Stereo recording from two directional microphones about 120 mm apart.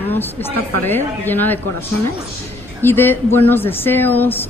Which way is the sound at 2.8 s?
15° left (ahead or behind).